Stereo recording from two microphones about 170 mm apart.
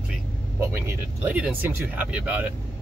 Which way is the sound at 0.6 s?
15° right (ahead or behind).